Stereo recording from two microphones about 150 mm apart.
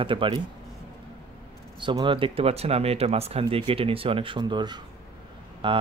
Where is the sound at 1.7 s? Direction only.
30° right (ahead or behind).